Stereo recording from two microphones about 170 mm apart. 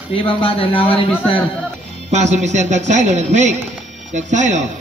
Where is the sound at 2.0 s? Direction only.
40° right (ahead or behind).